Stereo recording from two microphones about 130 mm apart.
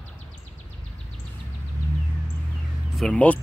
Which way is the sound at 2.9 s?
10° left (ahead or behind).